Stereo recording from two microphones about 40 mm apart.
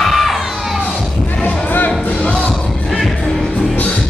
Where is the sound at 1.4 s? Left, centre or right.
Left.